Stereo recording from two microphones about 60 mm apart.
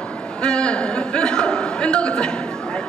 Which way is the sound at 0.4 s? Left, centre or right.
Centre.